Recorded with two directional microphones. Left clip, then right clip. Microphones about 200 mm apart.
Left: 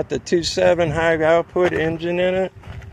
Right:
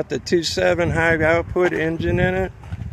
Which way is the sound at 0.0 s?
15° right (ahead or behind).